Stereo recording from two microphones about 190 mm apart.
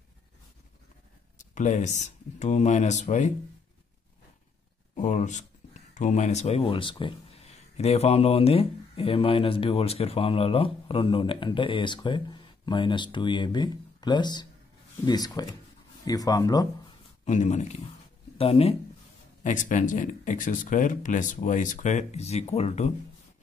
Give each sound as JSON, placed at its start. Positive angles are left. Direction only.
{"t": 1.4, "sound": "speech", "side_deg": 40}
{"t": 4.9, "sound": "speech", "side_deg": 40}
{"t": 17.2, "sound": "speech", "side_deg": 40}
{"t": 19.4, "sound": "speech", "side_deg": 40}